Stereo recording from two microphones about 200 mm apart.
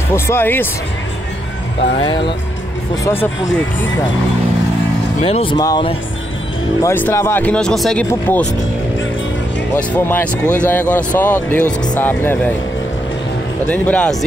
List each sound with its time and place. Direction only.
0.1 s speech: 10° left (ahead or behind)
1.8 s speech: 30° left (ahead or behind)
3.0 s speech: 10° left (ahead or behind)
5.2 s speech: 30° left (ahead or behind)
6.8 s speech: 10° left (ahead or behind)
9.8 s speech: 10° left (ahead or behind)
13.7 s speech: 5° left (ahead or behind)